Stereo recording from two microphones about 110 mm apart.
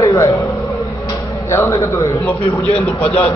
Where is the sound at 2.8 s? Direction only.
10° left (ahead or behind).